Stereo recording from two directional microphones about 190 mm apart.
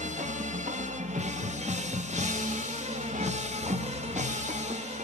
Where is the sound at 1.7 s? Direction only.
40° right (ahead or behind).